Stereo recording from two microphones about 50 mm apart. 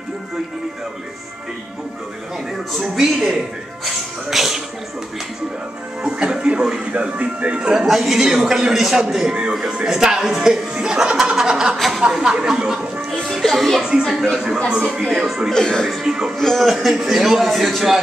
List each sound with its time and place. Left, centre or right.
2.7 s speech: centre
6.0 s speech: centre
6.9 s speech: right
7.7 s speech: centre
11.7 s speech: centre
12.0 s speech: centre
13.1 s music: centre
14.3 s speech: centre
15.5 s speech: centre
16.0 s speech: centre
16.3 s speech: centre